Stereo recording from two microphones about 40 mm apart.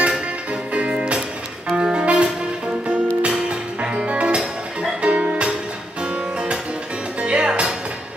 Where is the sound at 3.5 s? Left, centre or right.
Right.